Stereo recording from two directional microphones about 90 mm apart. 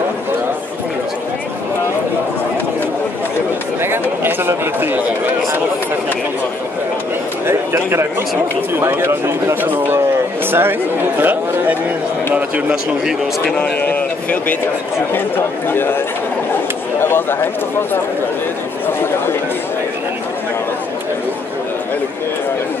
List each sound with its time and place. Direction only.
4.2 s speech: 25° right (ahead or behind)
7.4 s speech: 30° right (ahead or behind)
12.4 s speech: 15° right (ahead or behind)
13.6 s a man's voice: 15° left (ahead or behind)
17.0 s speech: 25° left (ahead or behind)